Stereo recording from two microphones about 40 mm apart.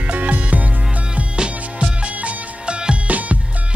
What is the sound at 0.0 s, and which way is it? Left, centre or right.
Music, right.